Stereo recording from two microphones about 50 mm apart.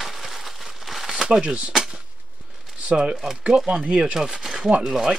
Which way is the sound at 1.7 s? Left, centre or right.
Centre.